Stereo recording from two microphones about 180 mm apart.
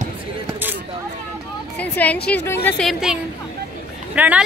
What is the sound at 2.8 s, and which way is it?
A woman's voice, centre (ahead or behind).